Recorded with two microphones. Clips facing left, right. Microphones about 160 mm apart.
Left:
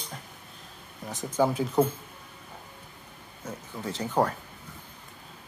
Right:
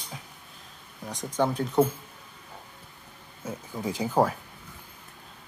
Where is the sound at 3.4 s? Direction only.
10° right (ahead or behind).